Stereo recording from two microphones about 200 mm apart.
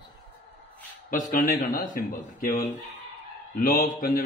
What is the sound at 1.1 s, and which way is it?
A man's voice, 45° left (ahead or behind).